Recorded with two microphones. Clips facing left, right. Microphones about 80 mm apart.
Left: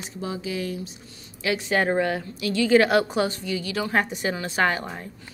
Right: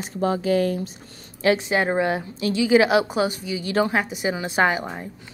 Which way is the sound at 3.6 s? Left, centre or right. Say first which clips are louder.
Right 11 dB; right.